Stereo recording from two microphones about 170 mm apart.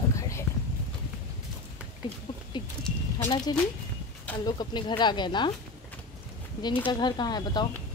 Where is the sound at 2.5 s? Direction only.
25° left (ahead or behind).